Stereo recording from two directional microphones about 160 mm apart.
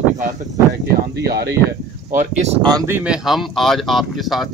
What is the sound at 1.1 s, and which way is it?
Speech, 75° right (ahead or behind).